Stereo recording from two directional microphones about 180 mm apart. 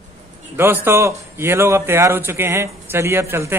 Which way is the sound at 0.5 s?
10° right (ahead or behind).